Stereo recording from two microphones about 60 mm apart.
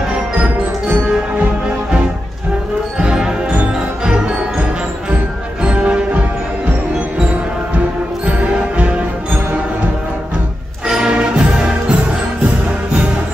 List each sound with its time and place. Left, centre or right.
3.0 s music: centre
8.3 s music: right
10.9 s music: centre